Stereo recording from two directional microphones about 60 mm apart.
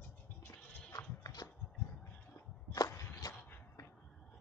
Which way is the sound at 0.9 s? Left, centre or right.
Left.